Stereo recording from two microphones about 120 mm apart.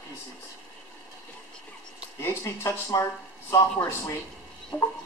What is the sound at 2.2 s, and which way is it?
Speech, 25° left (ahead or behind).